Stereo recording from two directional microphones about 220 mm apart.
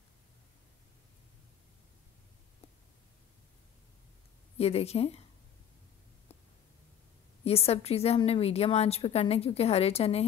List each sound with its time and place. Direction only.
4.6 s a woman's voice: 25° left (ahead or behind)
7.4 s a woman's voice: 25° left (ahead or behind)